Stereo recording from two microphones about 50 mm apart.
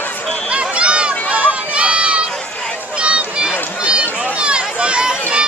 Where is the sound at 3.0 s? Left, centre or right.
Right.